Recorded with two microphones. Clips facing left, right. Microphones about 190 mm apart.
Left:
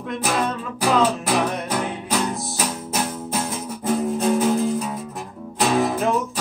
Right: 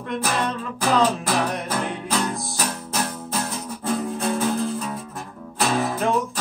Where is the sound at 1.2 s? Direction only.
15° left (ahead or behind).